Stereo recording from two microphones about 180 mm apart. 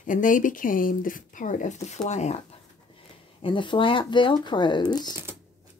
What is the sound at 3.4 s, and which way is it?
Speech, 25° left (ahead or behind).